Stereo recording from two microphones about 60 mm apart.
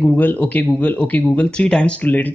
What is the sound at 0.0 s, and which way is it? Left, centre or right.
Speech, left.